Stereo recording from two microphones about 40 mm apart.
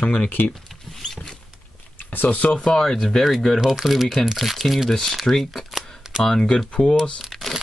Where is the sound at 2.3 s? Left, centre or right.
Left.